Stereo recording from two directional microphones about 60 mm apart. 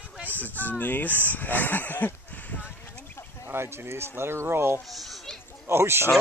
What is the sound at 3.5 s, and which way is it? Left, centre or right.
A man's voice, right.